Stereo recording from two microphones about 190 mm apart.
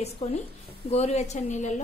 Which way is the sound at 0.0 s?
35° left (ahead or behind).